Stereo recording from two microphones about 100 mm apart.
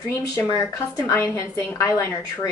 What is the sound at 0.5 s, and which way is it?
Speech, 30° left (ahead or behind).